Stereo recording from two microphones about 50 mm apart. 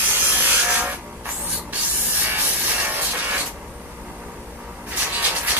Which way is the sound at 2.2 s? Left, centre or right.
Right.